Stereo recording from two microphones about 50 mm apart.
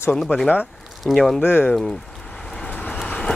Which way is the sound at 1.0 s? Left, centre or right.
Centre.